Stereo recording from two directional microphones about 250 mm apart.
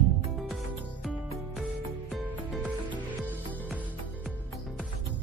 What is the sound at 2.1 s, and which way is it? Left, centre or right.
Music, centre.